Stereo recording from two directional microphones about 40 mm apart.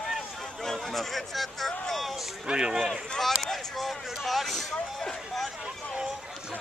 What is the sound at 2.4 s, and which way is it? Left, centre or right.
Speech, centre.